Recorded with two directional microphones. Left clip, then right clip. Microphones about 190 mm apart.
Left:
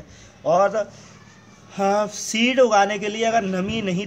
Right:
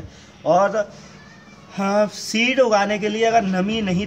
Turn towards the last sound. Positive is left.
turn(degrees=35)  # may be behind; listen again after turning